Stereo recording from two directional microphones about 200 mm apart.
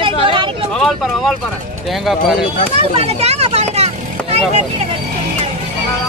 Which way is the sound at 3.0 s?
30° right (ahead or behind).